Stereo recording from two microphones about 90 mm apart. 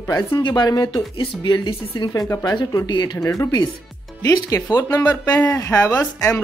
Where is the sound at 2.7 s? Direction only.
55° left (ahead or behind).